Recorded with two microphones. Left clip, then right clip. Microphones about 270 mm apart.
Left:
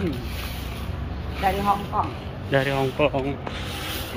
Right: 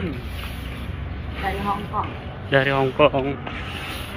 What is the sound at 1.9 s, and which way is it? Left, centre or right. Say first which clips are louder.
Speech: left 1 dB; left.